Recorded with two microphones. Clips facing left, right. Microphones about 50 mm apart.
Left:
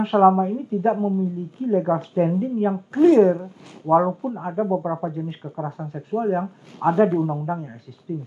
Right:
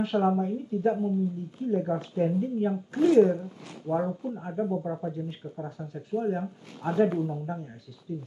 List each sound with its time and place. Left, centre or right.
0.0 s a woman's voice: left